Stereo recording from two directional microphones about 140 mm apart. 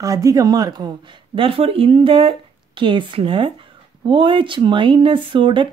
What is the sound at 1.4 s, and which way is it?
Speech, 40° right (ahead or behind).